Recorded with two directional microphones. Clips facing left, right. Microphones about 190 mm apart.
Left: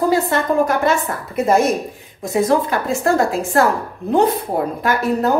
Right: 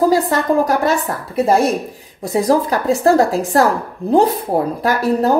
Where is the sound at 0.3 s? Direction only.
35° right (ahead or behind).